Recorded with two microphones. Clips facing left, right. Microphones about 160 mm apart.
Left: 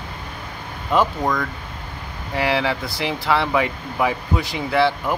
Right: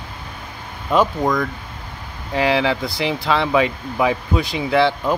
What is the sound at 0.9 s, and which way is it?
Speech, 15° right (ahead or behind).